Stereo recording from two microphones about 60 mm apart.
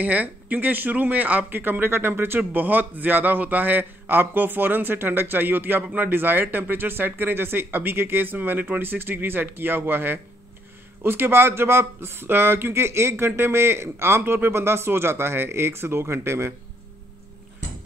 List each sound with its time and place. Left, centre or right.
0.0 s speech: right